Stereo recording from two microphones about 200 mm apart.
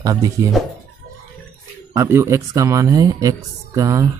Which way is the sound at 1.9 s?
15° right (ahead or behind).